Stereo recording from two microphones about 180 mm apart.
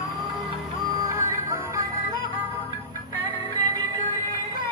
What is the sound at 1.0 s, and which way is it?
Music, 20° right (ahead or behind).